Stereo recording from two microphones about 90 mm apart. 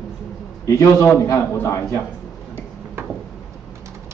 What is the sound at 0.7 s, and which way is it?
A man's voice, 30° left (ahead or behind).